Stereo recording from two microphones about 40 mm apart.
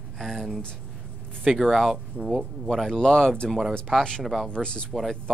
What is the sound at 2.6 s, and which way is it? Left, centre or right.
Speech, centre.